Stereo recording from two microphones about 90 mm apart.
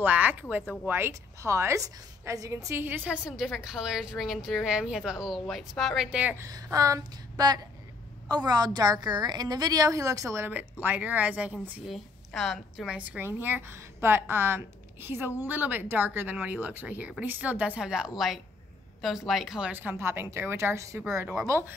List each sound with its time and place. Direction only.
0.0 s a woman's voice: 20° right (ahead or behind); by 2.6 s 35° right (ahead or behind)
2.7 s a woman's voice: 25° right (ahead or behind)
3.3 s speech: 5° right (ahead or behind)
6.5 s a woman's voice: 40° right (ahead or behind)
10.5 s a woman's voice: 20° right (ahead or behind)
11.9 s a woman's voice: centre (ahead or behind)
12.9 s a woman's voice: 15° right (ahead or behind)
19.7 s a woman's voice: 20° right (ahead or behind)
20.0 s a woman's voice: 30° right (ahead or behind)